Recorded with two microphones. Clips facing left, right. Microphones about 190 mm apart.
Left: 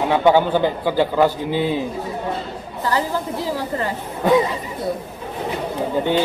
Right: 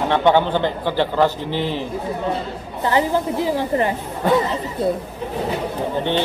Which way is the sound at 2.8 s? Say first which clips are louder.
Right 3 dB; 20° right (ahead or behind).